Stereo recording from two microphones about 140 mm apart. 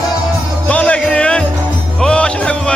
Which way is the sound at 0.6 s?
10° left (ahead or behind).